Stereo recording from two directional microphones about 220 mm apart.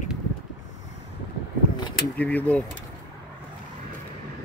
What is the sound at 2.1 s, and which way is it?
Speech, 5° left (ahead or behind).